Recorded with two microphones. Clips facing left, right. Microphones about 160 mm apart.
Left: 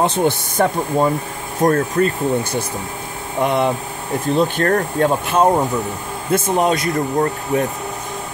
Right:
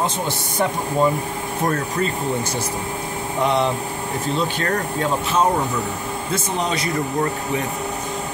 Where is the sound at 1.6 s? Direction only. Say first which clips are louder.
Left 7 dB; 50° left (ahead or behind).